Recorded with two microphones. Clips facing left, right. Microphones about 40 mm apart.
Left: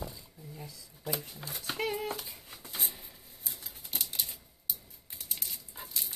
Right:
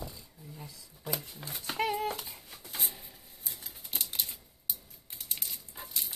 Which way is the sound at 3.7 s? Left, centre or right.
Centre.